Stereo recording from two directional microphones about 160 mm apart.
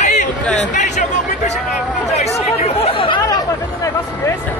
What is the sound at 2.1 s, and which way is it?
Chatter, 40° left (ahead or behind).